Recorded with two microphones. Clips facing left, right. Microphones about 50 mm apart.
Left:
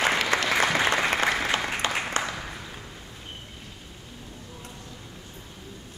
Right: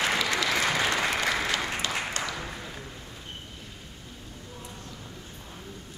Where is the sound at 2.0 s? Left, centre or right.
Left.